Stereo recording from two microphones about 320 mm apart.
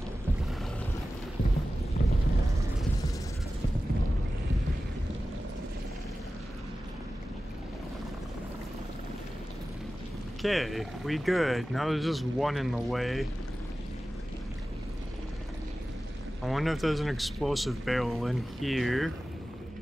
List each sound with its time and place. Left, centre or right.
2.0 s a sound: left
10.4 s speech: centre
16.4 s speech: centre